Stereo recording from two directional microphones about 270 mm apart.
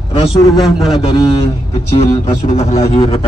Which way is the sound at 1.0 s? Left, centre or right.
Left.